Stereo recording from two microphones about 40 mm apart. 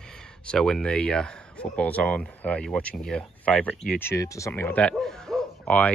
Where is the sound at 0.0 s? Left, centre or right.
Centre.